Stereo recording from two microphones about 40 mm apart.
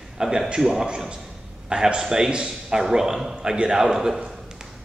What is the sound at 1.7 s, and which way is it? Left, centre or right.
A man's voice, right.